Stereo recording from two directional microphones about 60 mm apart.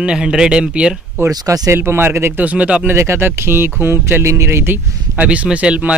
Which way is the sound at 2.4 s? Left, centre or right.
Right.